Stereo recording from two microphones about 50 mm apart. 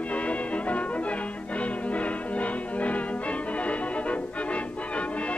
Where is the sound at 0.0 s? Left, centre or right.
Left.